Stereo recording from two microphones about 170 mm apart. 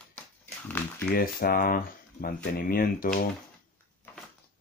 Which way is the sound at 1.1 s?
60° left (ahead or behind).